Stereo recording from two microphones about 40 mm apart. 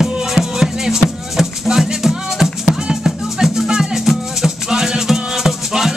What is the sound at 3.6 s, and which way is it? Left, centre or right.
Music, centre.